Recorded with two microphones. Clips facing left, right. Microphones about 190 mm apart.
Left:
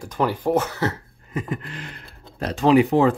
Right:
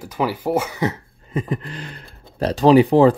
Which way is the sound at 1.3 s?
30° right (ahead or behind).